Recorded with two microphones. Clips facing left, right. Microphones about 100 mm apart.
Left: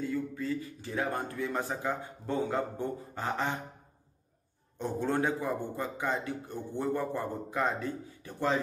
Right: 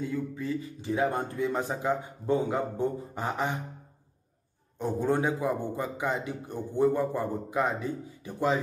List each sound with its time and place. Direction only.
0.0 s a man's voice: 20° right (ahead or behind)
4.7 s a man's voice: 15° right (ahead or behind)